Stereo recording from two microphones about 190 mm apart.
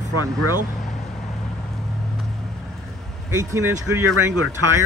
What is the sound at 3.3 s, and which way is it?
Speech, 15° right (ahead or behind).